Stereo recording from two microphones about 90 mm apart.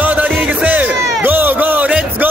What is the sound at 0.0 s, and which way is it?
Music, 20° right (ahead or behind).